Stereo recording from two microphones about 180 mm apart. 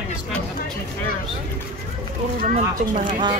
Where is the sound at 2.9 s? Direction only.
40° right (ahead or behind).